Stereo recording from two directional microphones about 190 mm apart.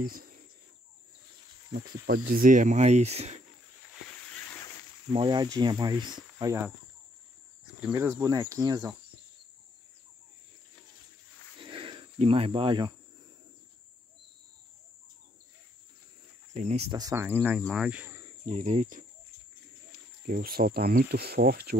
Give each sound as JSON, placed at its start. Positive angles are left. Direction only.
{"t": 0.0, "sound": "speech", "side_deg": -50}
{"t": 1.7, "sound": "speech", "side_deg": -50}
{"t": 5.1, "sound": "speech", "side_deg": -25}
{"t": 7.9, "sound": "speech", "side_deg": -15}
{"t": 11.6, "sound": "cricket", "side_deg": -25}
{"t": 16.5, "sound": "speech", "side_deg": -35}
{"t": 16.9, "sound": "speech", "side_deg": -15}
{"t": 18.4, "sound": "speech", "side_deg": -40}
{"t": 20.2, "sound": "speech", "side_deg": -50}